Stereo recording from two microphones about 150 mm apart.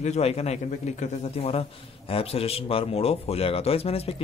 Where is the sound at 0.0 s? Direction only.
45° left (ahead or behind).